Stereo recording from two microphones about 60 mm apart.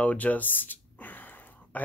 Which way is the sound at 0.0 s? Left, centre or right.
Left.